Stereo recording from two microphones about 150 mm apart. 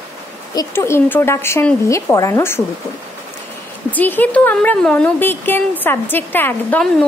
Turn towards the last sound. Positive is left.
turn(degrees=15)  # may be behind; listen again after turning